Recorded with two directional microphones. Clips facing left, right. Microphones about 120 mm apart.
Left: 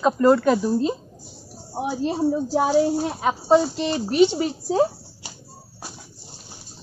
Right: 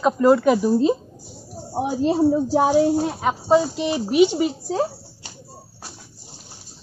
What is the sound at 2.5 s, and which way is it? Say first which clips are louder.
Speech: even; 15° right (ahead or behind).